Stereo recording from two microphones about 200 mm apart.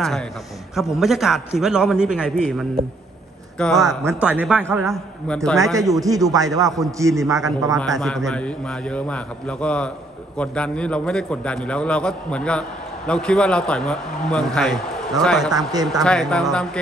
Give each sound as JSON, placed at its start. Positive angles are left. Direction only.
{"t": 0.9, "sound": "a man's voice", "side_deg": 0}
{"t": 3.5, "sound": "a man's voice", "side_deg": 0}
{"t": 4.0, "sound": "a man's voice", "side_deg": -10}
{"t": 5.8, "sound": "a man's voice", "side_deg": -15}
{"t": 8.3, "sound": "a man's voice", "side_deg": 5}
{"t": 15.5, "sound": "a man's voice", "side_deg": -20}
{"t": 16.0, "sound": "a man's voice", "side_deg": 5}